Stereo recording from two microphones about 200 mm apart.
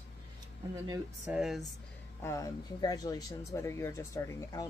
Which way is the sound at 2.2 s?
15° left (ahead or behind).